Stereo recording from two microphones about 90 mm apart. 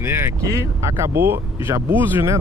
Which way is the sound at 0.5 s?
35° right (ahead or behind).